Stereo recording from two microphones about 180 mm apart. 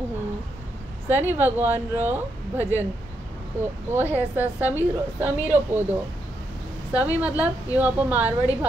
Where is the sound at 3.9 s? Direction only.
10° right (ahead or behind).